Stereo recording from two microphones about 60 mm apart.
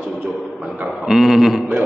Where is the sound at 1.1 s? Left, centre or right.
Centre.